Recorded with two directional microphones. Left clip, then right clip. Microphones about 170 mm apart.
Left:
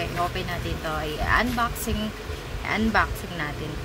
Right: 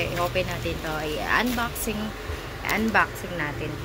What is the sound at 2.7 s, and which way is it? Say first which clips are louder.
Speech: right 1 dB; 15° left (ahead or behind).